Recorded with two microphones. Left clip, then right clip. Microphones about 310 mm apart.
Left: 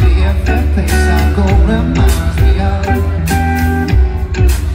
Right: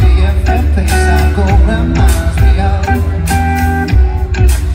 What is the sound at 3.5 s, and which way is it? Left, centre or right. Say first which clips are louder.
Music: right 1 dB; right.